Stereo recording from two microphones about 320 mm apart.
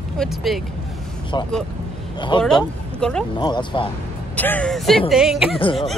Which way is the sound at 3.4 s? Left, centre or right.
Centre.